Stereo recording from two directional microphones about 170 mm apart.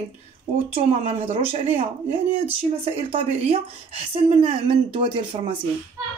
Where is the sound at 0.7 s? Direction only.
35° right (ahead or behind).